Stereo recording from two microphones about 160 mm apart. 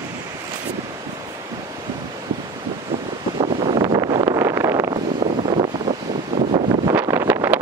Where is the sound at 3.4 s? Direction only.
35° right (ahead or behind).